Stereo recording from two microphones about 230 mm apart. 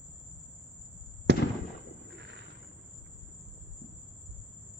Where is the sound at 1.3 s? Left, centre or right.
Right.